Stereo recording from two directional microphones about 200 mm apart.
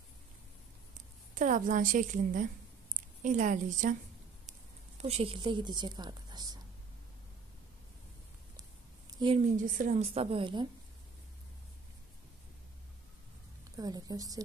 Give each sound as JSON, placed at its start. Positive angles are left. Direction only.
{"t": 1.3, "sound": "a woman's voice", "side_deg": -40}
{"t": 9.2, "sound": "a woman's voice", "side_deg": -30}
{"t": 13.7, "sound": "a woman's voice", "side_deg": -20}